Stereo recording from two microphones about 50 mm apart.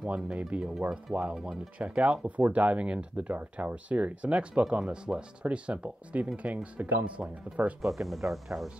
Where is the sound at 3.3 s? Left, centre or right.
Right.